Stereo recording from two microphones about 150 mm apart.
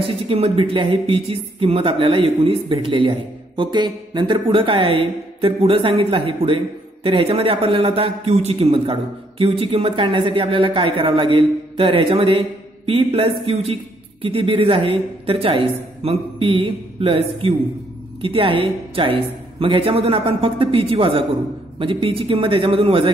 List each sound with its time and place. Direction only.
0.0 s speech: 40° right (ahead or behind)